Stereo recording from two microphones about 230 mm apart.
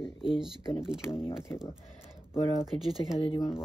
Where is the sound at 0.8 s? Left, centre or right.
Centre.